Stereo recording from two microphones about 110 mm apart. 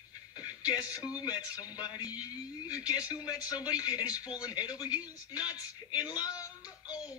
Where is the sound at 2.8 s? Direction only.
10° right (ahead or behind).